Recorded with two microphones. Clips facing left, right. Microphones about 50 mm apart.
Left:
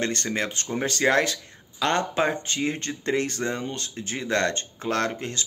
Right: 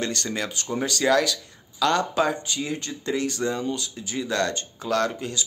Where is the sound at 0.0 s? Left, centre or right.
Left.